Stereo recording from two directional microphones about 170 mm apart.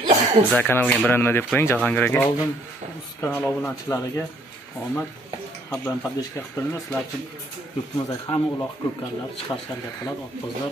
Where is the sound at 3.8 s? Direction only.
20° left (ahead or behind).